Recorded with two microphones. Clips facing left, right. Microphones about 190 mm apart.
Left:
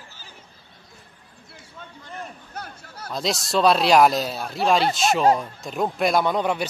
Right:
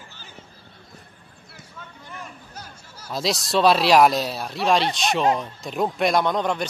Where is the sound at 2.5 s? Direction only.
60° left (ahead or behind).